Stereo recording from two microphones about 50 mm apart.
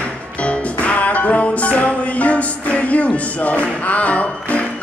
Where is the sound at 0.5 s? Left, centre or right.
Left.